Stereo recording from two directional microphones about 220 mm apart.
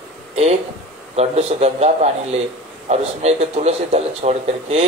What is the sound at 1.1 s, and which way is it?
A man's voice, 30° right (ahead or behind).